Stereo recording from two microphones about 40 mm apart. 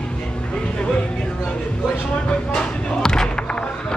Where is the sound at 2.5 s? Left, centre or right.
Left.